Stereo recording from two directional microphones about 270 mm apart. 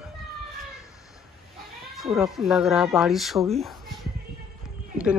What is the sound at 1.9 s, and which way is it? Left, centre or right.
Speech, centre.